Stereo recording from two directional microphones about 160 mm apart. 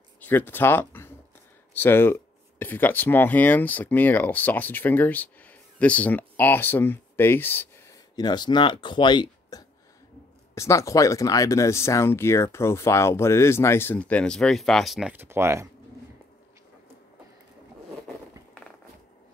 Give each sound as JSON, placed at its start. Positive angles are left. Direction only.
{"t": 0.2, "sound": "speech", "side_deg": 10}